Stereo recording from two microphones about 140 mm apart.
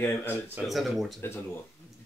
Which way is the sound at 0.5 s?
Centre (ahead or behind).